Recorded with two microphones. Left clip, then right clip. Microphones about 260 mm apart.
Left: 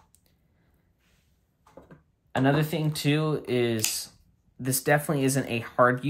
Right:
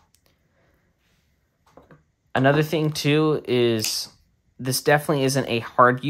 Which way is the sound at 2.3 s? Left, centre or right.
Right.